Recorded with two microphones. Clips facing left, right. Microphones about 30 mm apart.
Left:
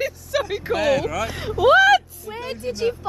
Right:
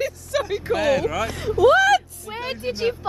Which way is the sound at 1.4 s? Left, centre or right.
Centre.